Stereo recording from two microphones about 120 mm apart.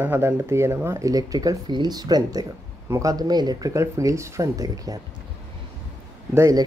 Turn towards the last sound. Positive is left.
turn(degrees=-25)  # may be behind; listen again after turning